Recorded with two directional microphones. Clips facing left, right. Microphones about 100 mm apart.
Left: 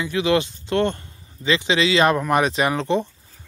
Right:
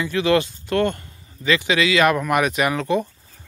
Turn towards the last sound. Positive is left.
turn(degrees=30)  # may be behind; listen again after turning